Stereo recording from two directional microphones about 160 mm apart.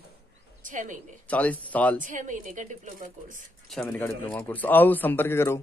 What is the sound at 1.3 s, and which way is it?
Speech, 10° left (ahead or behind).